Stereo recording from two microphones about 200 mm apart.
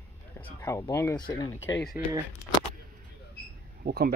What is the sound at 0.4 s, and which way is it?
Speech, 10° left (ahead or behind).